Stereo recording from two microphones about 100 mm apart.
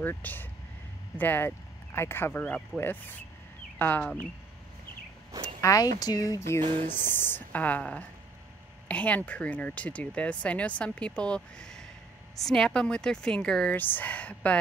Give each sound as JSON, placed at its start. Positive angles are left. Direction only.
{"t": 0.0, "sound": "speech", "side_deg": 20}
{"t": 5.6, "sound": "speech", "side_deg": 35}
{"t": 7.2, "sound": "speech", "side_deg": 20}